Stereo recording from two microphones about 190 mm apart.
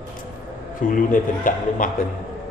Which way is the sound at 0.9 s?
45° left (ahead or behind).